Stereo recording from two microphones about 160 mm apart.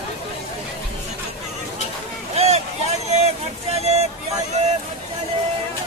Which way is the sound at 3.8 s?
40° right (ahead or behind).